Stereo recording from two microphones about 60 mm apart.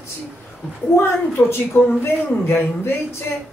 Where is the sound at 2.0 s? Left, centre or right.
Left.